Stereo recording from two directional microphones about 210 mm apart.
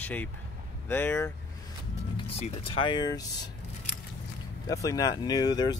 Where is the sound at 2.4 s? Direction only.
30° left (ahead or behind).